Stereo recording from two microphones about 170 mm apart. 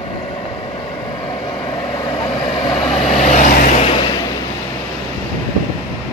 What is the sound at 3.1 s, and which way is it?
Vehicle, 45° left (ahead or behind).